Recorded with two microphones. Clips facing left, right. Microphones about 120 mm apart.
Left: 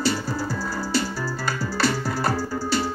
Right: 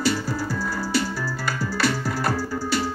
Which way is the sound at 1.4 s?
35° left (ahead or behind).